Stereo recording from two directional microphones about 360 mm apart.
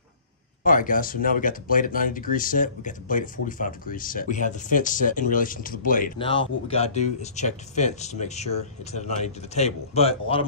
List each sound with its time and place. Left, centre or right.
0.7 s speech: left